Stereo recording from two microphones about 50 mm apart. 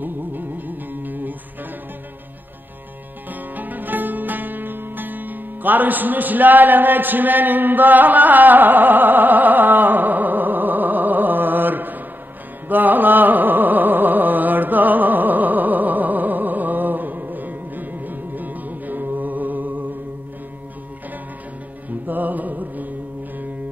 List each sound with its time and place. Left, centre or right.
0.0 s music: right
3.3 s music: right
12.6 s carnatic music: right
22.0 s music: right